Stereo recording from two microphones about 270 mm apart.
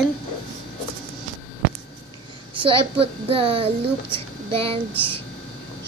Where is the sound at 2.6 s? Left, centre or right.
Centre.